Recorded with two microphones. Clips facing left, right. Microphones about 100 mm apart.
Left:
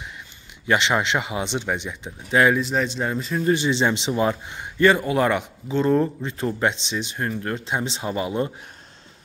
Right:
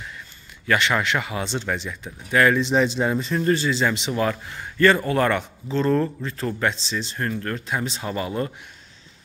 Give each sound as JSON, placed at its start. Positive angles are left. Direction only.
{"t": 0.7, "sound": "a man's voice", "side_deg": 20}
{"t": 2.7, "sound": "speech", "side_deg": -5}
{"t": 3.5, "sound": "a man's voice", "side_deg": 20}